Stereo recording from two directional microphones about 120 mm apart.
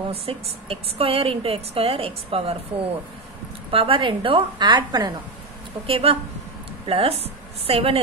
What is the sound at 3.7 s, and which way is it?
A woman's voice, 50° right (ahead or behind).